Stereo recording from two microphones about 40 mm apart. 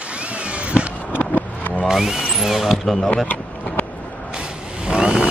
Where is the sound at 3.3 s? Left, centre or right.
Left.